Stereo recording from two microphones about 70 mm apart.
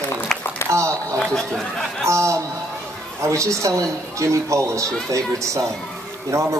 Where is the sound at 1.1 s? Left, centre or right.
Centre.